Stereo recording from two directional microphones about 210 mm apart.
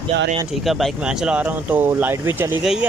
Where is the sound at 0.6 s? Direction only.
Centre (ahead or behind).